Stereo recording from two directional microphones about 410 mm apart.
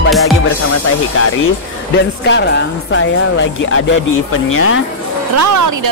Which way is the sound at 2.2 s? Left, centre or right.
Left.